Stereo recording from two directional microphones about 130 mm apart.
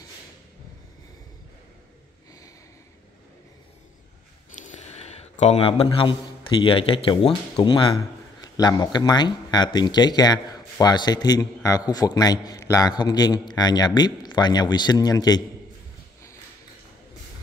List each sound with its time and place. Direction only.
4.6 s speech: 70° left (ahead or behind); by 15.4 s 30° left (ahead or behind)